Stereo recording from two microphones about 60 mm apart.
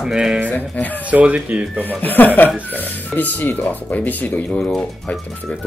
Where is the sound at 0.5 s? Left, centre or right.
Left.